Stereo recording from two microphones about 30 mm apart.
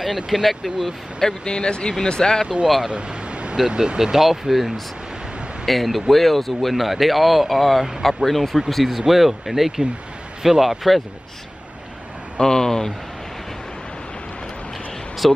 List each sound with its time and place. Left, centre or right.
0.0 s speech: centre
1.2 s speech: left
2.4 s speech: right
2.9 s vehicle: right
3.5 s speech: right
4.0 s speech: centre
8.8 s speech: centre
12.4 s speech: left
15.2 s speech: centre